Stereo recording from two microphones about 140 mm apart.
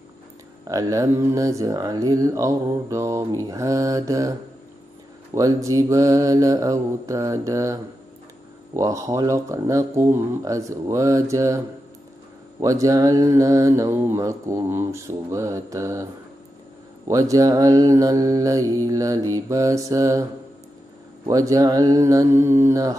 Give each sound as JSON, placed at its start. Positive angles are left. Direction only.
{"t": 0.7, "sound": "speech", "side_deg": -25}
{"t": 5.3, "sound": "speech", "side_deg": -25}
{"t": 12.6, "sound": "speech", "side_deg": -25}
{"t": 17.1, "sound": "speech", "side_deg": -25}
{"t": 21.3, "sound": "speech", "side_deg": -25}